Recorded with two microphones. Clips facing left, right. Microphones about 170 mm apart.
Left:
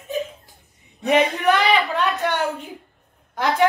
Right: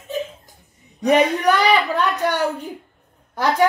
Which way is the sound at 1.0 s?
40° right (ahead or behind).